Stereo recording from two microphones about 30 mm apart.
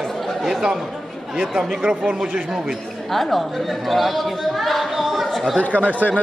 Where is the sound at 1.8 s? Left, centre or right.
Right.